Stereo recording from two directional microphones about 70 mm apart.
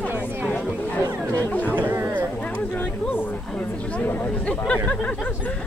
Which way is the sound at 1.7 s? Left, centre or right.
Right.